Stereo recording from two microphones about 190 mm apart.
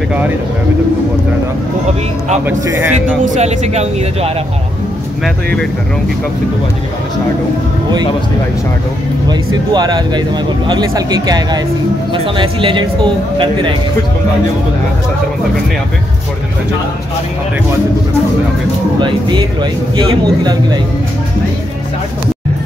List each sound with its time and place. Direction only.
2.4 s a man's voice: 10° right (ahead or behind)
3.3 s speech: 35° right (ahead or behind)
9.7 s speech: 20° right (ahead or behind)
18.9 s speech: 25° right (ahead or behind)